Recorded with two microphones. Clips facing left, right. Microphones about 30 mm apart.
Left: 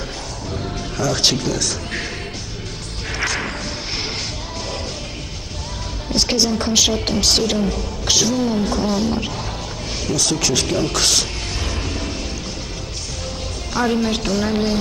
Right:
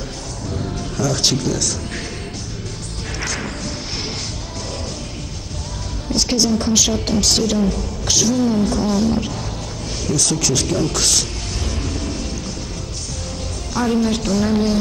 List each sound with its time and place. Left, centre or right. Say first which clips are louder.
0.5 s music: right 1 dB; centre
3.2 s music: left 4 dB; centre
6.1 s a woman's voice: right 1 dB; left
11.8 s music: even; centre
13.7 s a woman's voice: right 1 dB; centre